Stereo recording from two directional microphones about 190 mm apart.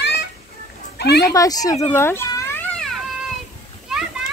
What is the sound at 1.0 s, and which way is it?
Speech, 60° left (ahead or behind).